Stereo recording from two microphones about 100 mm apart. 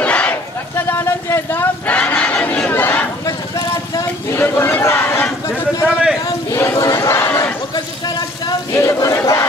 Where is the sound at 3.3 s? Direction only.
40° left (ahead or behind).